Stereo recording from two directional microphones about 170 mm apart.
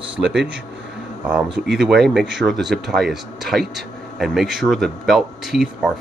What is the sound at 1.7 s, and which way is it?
Speech, centre (ahead or behind).